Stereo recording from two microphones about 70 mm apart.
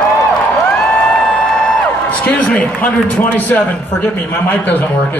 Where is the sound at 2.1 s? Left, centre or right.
Left.